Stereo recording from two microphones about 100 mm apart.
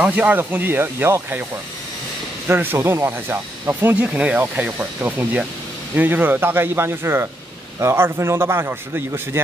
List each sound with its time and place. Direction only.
0.0 s speech: 15° right (ahead or behind)
2.4 s speech: 20° right (ahead or behind)